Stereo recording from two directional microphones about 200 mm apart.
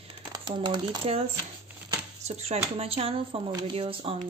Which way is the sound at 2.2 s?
30° right (ahead or behind).